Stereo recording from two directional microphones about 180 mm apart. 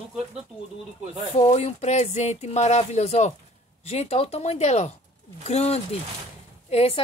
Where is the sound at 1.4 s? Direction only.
40° left (ahead or behind).